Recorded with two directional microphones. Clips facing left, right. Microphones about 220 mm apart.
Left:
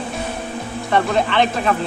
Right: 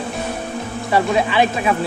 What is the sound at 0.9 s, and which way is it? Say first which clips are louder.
Speech: right 1 dB; 5° right (ahead or behind).